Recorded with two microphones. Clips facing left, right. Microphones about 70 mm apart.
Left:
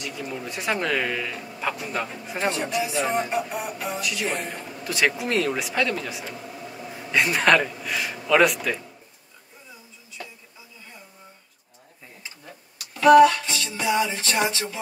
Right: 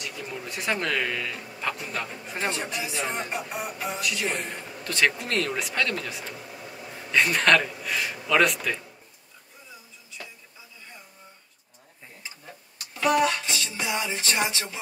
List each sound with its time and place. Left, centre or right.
0.0 s music: centre
6.3 s speech: centre
13.1 s music: right
13.7 s music: left